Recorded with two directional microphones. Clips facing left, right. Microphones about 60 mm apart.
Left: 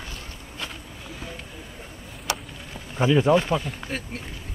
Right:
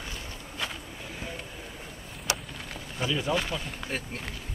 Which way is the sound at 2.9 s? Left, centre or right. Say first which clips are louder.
Left 10 dB; left.